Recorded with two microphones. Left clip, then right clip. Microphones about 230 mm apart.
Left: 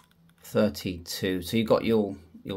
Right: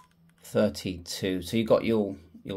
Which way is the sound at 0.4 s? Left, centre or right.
Centre.